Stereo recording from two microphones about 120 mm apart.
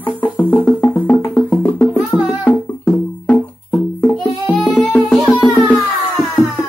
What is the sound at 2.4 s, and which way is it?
Music, 15° left (ahead or behind).